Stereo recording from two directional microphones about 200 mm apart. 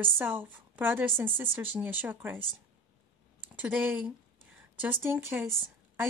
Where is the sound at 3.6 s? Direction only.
5° right (ahead or behind).